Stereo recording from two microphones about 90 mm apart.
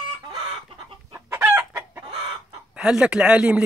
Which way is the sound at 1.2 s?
20° right (ahead or behind).